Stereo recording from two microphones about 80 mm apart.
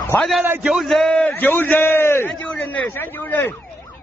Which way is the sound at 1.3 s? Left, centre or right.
Left.